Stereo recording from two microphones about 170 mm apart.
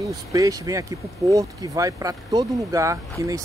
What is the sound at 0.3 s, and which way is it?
Speech, 20° right (ahead or behind).